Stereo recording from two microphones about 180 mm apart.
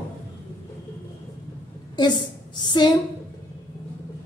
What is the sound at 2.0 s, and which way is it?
Speech, 25° left (ahead or behind).